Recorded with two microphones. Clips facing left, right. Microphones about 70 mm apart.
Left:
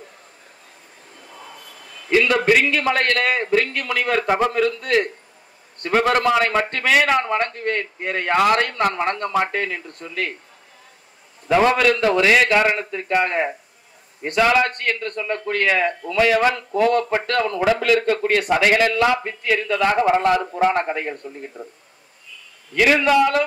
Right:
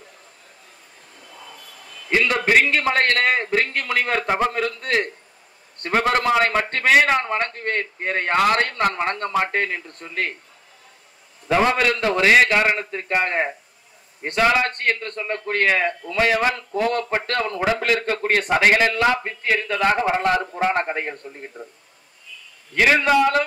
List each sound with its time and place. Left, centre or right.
2.3 s a man's voice: right
11.4 s a man's voice: right
22.8 s a man's voice: right